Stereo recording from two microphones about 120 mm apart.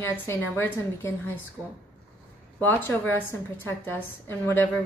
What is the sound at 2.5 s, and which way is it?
A woman's voice, 15° left (ahead or behind).